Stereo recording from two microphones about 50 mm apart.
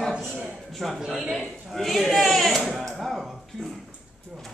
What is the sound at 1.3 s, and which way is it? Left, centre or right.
Speech, centre.